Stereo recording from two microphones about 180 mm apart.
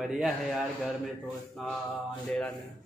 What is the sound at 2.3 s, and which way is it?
Speech, 5° left (ahead or behind).